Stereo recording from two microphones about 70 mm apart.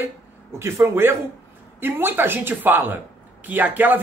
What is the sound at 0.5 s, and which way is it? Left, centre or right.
Speech, right.